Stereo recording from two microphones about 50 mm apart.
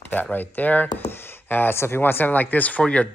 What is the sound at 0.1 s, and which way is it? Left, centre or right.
Speech, left.